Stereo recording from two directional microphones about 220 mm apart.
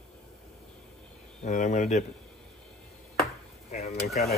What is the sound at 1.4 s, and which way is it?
Speech, 35° left (ahead or behind).